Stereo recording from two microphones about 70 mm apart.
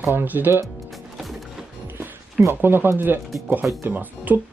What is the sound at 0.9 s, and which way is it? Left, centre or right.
Music, centre.